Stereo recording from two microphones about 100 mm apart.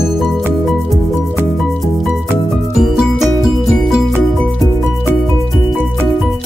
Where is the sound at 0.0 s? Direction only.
Centre (ahead or behind).